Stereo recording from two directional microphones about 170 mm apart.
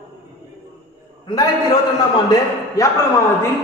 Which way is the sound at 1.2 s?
25° left (ahead or behind).